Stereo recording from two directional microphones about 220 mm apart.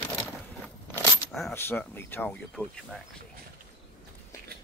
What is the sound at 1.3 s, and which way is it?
Speech, 5° left (ahead or behind).